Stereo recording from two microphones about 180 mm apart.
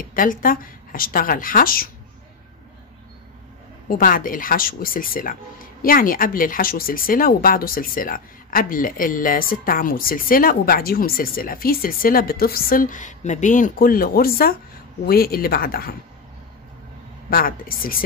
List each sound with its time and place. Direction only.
0.1 s speech: 50° left (ahead or behind)
4.0 s speech: 50° left (ahead or behind)
17.3 s speech: 55° left (ahead or behind)